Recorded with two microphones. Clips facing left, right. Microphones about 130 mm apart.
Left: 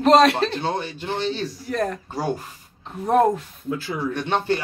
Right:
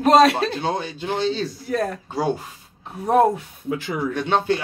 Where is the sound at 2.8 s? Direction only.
10° right (ahead or behind).